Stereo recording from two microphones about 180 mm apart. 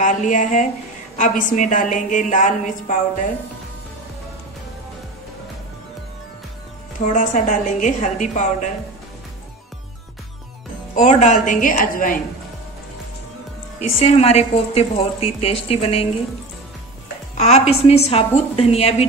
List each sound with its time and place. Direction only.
0.0 s a woman's voice: 45° left (ahead or behind)
7.1 s a woman's voice: 45° left (ahead or behind)
11.0 s a woman's voice: 40° left (ahead or behind)
13.7 s a woman's voice: 35° left (ahead or behind)
17.4 s a woman's voice: 35° left (ahead or behind)